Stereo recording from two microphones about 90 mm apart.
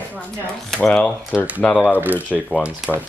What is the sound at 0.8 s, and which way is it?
Speech, 10° left (ahead or behind).